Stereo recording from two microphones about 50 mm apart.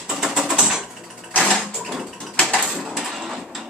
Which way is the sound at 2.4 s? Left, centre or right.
Centre.